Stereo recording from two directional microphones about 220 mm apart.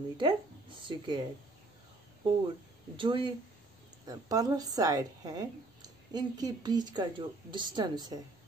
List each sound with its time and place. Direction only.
0.2 s speech: 20° right (ahead or behind)
3.0 s speech: 20° right (ahead or behind)